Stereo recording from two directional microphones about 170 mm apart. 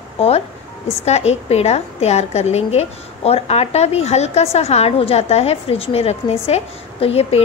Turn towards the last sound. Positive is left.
turn(degrees=35)  # may be behind; listen again after turning